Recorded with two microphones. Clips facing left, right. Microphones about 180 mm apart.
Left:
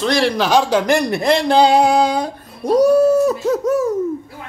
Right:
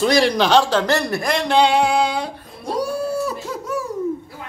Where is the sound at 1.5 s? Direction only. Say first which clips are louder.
Left 3 dB; 40° left (ahead or behind).